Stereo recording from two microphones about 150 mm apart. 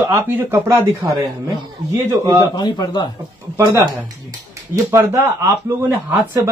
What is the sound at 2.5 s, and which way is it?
Speech, 30° left (ahead or behind).